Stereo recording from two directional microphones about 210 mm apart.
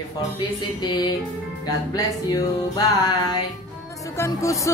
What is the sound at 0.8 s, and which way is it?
Speech, 20° left (ahead or behind).